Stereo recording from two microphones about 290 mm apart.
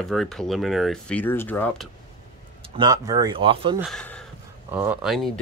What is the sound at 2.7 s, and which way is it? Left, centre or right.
Speech, centre.